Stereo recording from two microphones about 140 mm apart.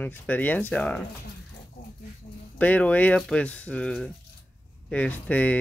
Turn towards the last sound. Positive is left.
turn(degrees=10)  # may be behind; listen again after turning